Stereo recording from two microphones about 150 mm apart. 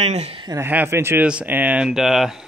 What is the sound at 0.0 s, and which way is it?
Speech, 45° right (ahead or behind).